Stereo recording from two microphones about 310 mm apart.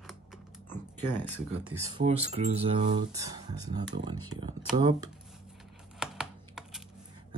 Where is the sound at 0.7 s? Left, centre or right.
Centre.